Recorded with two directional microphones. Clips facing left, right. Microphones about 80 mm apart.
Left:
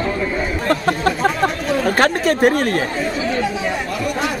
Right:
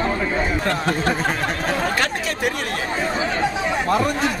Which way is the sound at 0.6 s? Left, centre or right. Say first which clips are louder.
Left 3 dB; left.